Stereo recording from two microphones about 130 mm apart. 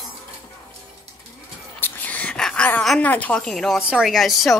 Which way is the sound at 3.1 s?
10° left (ahead or behind).